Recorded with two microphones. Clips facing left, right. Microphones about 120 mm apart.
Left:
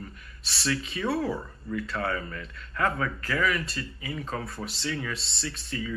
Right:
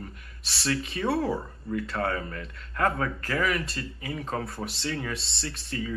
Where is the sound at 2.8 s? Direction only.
30° right (ahead or behind).